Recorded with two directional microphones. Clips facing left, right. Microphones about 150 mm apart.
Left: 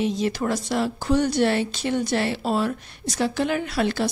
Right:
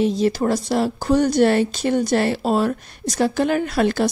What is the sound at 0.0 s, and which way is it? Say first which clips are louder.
A woman's voice: right 5 dB; 35° right (ahead or behind).